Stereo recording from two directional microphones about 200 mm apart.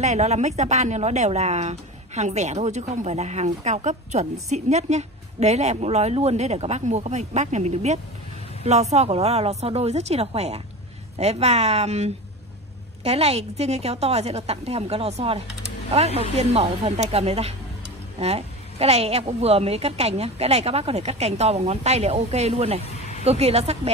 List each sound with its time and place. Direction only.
0.0 s a woman's voice: 35° right (ahead or behind)